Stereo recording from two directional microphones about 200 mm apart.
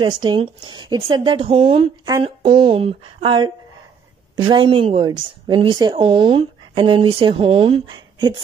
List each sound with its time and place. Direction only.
0.0 s a woman's voice: 25° right (ahead or behind)